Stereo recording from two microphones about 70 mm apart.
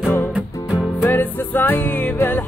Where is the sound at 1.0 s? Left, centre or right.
Left.